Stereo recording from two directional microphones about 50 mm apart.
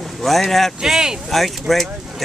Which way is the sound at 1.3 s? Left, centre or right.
Centre.